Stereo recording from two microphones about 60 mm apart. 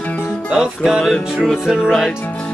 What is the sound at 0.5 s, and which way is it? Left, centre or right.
Music, centre.